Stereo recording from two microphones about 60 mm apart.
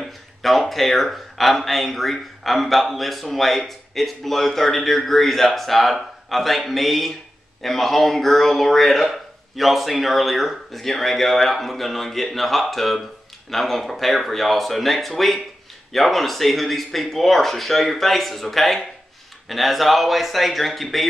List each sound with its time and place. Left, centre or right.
0.0 s speech: centre